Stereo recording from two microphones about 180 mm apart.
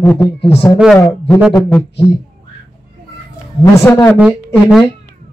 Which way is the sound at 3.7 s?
15° left (ahead or behind).